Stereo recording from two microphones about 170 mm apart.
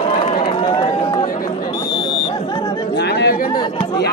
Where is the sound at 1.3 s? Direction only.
55° left (ahead or behind).